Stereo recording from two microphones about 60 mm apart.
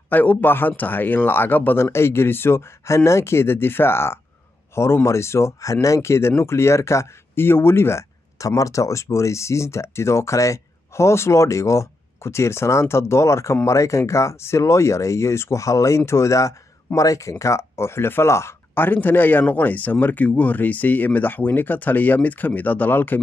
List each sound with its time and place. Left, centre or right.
0.1 s speech: left
1.9 s speech: left
18.9 s speech: left